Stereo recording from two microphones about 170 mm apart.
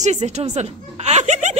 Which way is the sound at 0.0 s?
45° right (ahead or behind).